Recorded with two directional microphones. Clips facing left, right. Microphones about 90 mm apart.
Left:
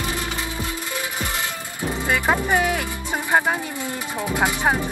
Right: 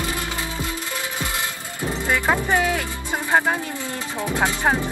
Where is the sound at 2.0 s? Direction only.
15° left (ahead or behind).